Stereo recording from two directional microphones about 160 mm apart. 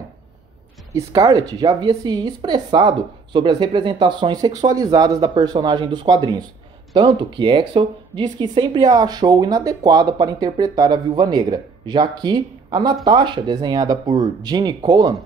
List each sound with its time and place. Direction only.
0.9 s speech: 25° right (ahead or behind)